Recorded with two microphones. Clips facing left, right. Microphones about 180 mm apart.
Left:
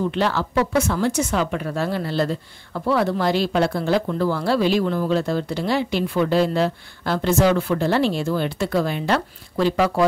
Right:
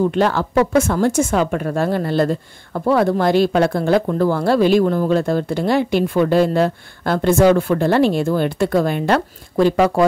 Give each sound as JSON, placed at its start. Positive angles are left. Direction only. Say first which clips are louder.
{"t": 0.1, "sound": "speech", "louder": "right 5 dB", "side_deg": -50}